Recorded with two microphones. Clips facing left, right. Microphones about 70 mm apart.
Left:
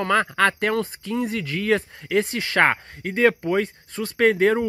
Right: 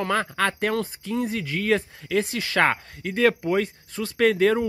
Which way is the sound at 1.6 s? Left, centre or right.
Left.